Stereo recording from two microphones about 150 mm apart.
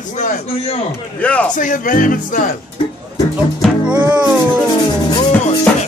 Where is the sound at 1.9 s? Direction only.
65° left (ahead or behind).